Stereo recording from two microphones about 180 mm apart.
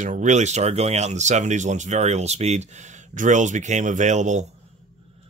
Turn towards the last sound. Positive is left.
turn(degrees=-40)  # may be behind; listen again after turning